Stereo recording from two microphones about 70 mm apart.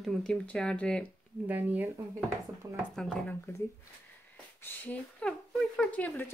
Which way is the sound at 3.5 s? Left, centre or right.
Left.